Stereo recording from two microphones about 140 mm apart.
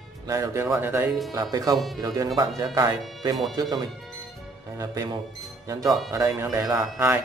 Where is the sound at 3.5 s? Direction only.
30° right (ahead or behind).